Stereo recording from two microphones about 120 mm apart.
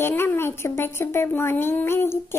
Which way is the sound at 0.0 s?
20° left (ahead or behind).